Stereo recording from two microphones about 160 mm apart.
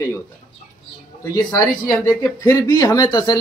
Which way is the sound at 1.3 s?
25° left (ahead or behind).